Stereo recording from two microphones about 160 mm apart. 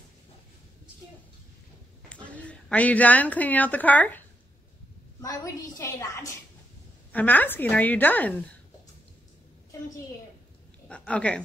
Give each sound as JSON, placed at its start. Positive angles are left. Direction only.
{"t": 2.0, "sound": "a woman's voice", "side_deg": 10}
{"t": 5.2, "sound": "a woman's voice", "side_deg": 20}
{"t": 10.9, "sound": "speech", "side_deg": 5}